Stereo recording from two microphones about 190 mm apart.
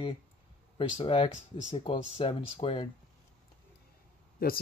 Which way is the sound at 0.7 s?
25° left (ahead or behind).